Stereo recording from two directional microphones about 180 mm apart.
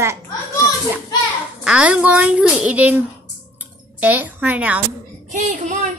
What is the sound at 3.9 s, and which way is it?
Speech, 10° right (ahead or behind).